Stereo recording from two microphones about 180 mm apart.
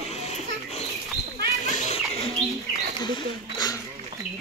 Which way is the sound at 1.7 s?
40° left (ahead or behind).